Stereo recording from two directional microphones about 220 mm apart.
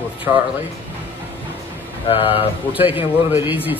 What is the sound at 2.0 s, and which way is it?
Speech, 25° left (ahead or behind).